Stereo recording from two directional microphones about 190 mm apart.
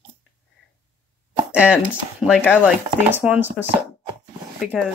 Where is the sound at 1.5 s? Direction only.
5° right (ahead or behind).